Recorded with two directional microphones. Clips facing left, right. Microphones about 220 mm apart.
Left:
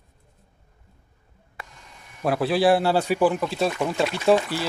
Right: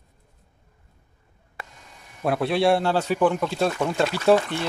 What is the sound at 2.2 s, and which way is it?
Speech, centre (ahead or behind).